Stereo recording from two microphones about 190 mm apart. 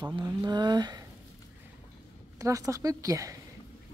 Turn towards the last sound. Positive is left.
turn(degrees=-15)  # may be behind; listen again after turning